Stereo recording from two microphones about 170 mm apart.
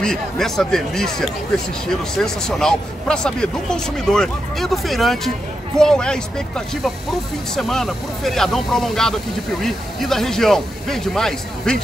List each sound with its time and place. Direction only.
0.0 s speech: 5° left (ahead or behind)